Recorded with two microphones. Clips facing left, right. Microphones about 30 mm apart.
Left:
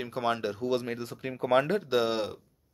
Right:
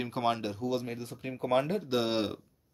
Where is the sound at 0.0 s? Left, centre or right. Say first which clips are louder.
Even; centre.